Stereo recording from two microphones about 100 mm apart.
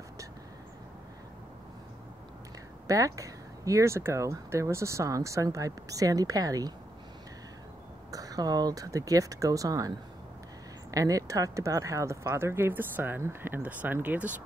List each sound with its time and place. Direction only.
2.9 s speech: 35° right (ahead or behind)
8.1 s speech: 35° right (ahead or behind); by 14.3 s 15° right (ahead or behind)